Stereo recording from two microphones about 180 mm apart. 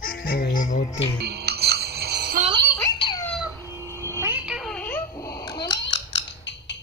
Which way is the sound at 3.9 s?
15° left (ahead or behind).